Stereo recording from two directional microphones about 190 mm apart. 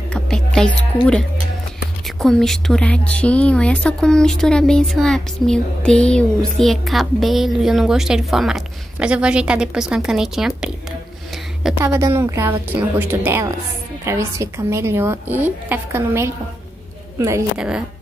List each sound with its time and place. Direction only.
0.1 s music: 5° left (ahead or behind)
2.0 s a woman's voice: centre (ahead or behind)
11.8 s a woman's voice: 15° right (ahead or behind)
17.6 s a woman's voice: 5° right (ahead or behind)